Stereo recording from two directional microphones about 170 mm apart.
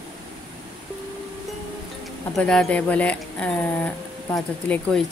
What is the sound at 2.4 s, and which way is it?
Speech, 5° left (ahead or behind).